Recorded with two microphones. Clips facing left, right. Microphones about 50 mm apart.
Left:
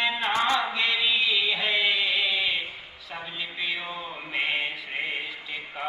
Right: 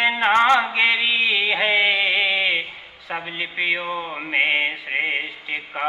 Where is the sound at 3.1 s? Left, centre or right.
Right.